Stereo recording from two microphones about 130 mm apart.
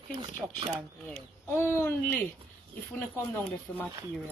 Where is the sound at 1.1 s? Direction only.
15° left (ahead or behind).